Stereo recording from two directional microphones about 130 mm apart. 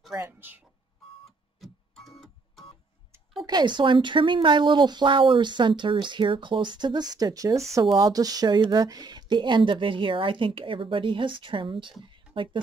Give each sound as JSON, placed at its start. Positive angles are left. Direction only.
{"t": 0.2, "sound": "speech", "side_deg": -15}
{"t": 1.6, "sound": "music", "side_deg": 0}
{"t": 3.4, "sound": "speech", "side_deg": -35}
{"t": 12.0, "sound": "a sound", "side_deg": -40}